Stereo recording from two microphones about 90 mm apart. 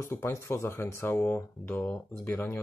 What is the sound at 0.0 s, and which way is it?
Speech, 30° left (ahead or behind).